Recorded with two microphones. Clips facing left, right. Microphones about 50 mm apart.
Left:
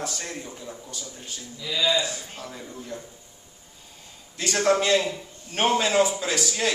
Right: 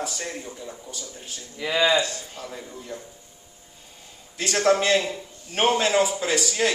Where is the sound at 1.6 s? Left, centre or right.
Right.